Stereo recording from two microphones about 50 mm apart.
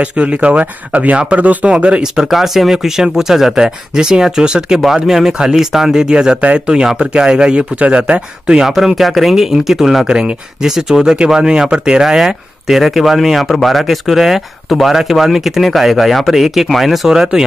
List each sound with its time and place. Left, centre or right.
0.1 s speech: right
2.1 s speech: centre
8.6 s speech: centre